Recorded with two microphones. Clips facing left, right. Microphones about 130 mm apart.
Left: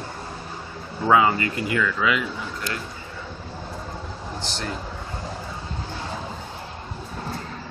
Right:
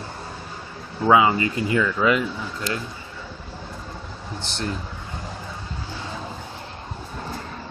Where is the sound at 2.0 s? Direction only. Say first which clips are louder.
Right 5 dB; 40° right (ahead or behind).